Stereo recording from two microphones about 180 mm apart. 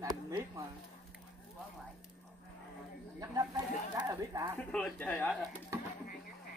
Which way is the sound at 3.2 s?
20° right (ahead or behind).